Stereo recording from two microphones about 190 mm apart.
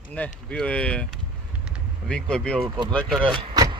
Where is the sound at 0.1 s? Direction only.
5° left (ahead or behind).